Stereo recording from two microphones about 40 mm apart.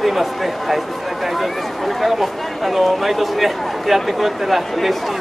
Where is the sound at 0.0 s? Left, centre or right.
Centre.